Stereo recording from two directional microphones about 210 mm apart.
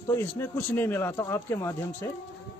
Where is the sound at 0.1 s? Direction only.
10° left (ahead or behind).